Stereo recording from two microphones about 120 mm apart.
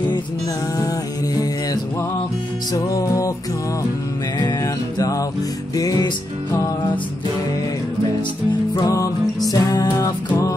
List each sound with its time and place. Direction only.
2.7 s music: 30° left (ahead or behind)
4.9 s music: 30° left (ahead or behind)
8.7 s music: 25° left (ahead or behind)